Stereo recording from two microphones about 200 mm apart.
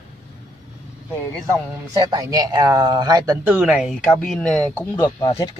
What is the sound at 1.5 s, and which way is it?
Speech, 20° right (ahead or behind).